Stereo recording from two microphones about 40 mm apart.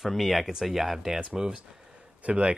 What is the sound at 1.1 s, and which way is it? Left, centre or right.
Speech, centre.